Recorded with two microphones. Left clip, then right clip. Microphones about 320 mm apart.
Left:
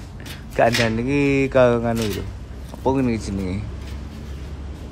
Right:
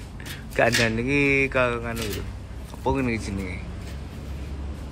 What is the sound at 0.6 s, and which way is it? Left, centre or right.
Speech, centre.